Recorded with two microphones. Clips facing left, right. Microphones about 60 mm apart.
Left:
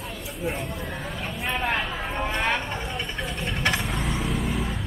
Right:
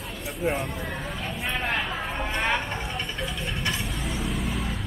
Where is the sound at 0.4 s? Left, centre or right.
Centre.